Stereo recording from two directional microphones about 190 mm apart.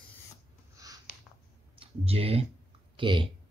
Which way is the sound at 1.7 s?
30° right (ahead or behind).